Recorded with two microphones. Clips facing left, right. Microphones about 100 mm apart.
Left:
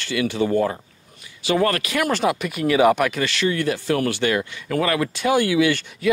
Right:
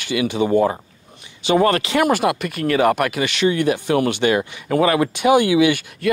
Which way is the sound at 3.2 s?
20° right (ahead or behind).